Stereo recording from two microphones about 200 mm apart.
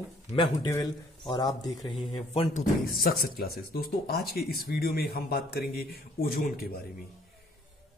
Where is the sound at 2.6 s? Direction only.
45° left (ahead or behind).